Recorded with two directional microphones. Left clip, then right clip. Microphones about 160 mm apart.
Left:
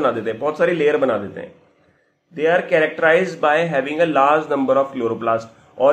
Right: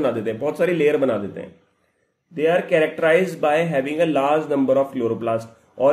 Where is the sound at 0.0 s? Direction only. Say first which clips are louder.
Left 2 dB; 20° right (ahead or behind).